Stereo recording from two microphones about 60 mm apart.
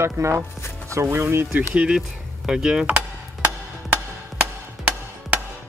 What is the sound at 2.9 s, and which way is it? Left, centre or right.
Music, right.